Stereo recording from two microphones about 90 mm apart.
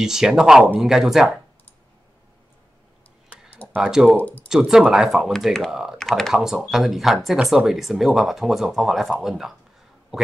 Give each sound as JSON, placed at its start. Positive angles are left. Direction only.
{"t": 0.0, "sound": "speech", "side_deg": -5}
{"t": 3.7, "sound": "speech", "side_deg": -10}
{"t": 4.2, "sound": "speech", "side_deg": 20}
{"t": 4.5, "sound": "speech", "side_deg": -5}
{"t": 5.7, "sound": "speech", "side_deg": -5}
{"t": 5.9, "sound": "speech", "side_deg": 5}